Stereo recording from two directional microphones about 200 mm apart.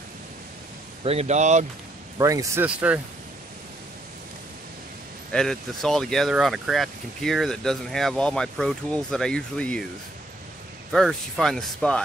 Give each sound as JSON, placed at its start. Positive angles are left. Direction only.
{"t": 1.0, "sound": "speech", "side_deg": -35}
{"t": 2.1, "sound": "speech", "side_deg": -15}
{"t": 5.3, "sound": "speech", "side_deg": 5}
{"t": 10.9, "sound": "speech", "side_deg": 0}